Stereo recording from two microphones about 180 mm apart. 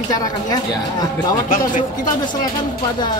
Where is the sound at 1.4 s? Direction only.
50° left (ahead or behind).